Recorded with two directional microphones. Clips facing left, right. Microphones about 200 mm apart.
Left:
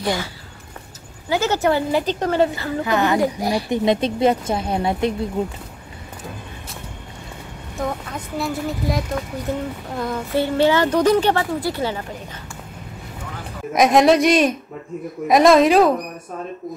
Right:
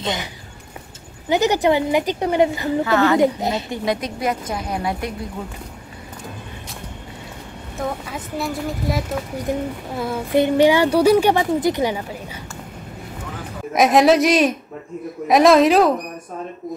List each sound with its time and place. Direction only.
0.0 s a child's voice: 20° right (ahead or behind)
1.3 s a woman's voice: 15° right (ahead or behind)
2.8 s a child's voice: 15° left (ahead or behind)
3.2 s a child's voice: 20° right (ahead or behind)
3.7 s a woman's voice: 25° left (ahead or behind)
7.7 s a woman's voice: 5° right (ahead or behind)
13.7 s speech: centre (ahead or behind)